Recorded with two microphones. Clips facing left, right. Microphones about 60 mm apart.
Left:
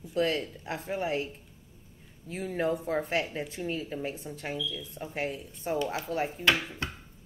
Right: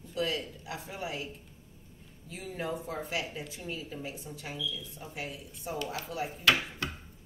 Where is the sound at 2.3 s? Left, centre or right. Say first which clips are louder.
Left 7 dB; left.